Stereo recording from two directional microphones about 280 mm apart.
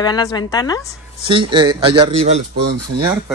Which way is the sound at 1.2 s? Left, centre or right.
Centre.